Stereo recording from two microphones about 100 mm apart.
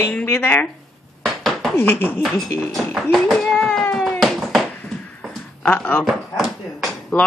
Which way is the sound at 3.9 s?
5° left (ahead or behind).